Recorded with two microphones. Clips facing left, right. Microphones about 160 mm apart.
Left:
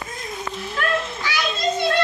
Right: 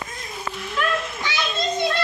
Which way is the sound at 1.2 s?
25° right (ahead or behind).